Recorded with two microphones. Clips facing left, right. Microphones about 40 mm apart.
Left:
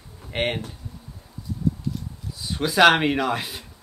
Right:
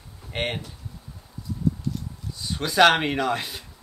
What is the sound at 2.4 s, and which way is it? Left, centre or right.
Speech, centre.